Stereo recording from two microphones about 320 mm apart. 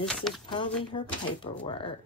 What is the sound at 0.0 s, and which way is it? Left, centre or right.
Speech, centre.